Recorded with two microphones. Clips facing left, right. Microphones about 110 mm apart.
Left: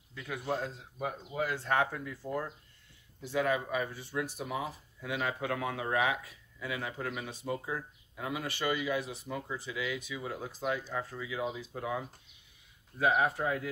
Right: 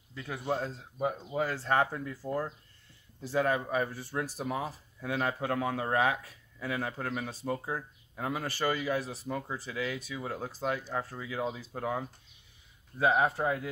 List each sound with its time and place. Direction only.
0.1 s speech: 30° right (ahead or behind)
13.0 s speech: 30° right (ahead or behind)